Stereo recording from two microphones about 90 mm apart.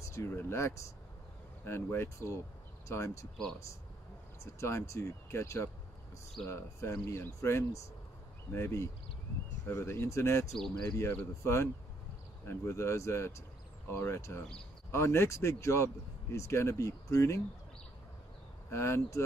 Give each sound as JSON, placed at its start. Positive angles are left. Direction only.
{"t": 0.0, "sound": "speech", "side_deg": 35}
{"t": 4.6, "sound": "speech", "side_deg": 30}
{"t": 18.7, "sound": "speech", "side_deg": 30}